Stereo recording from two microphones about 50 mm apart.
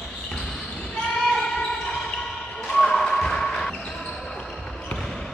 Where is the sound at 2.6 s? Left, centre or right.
Centre.